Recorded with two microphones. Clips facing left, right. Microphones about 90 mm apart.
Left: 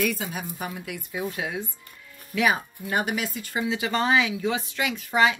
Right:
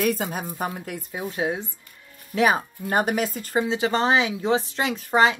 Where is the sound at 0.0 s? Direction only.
45° right (ahead or behind).